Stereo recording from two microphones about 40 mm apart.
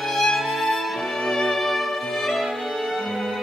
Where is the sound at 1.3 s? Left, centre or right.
Centre.